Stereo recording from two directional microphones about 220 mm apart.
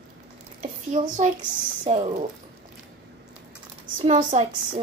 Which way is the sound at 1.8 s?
25° right (ahead or behind).